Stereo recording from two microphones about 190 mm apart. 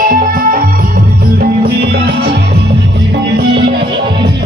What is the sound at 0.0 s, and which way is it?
Music, 50° right (ahead or behind).